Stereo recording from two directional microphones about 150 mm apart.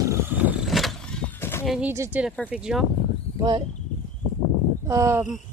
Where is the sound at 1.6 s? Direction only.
5° right (ahead or behind).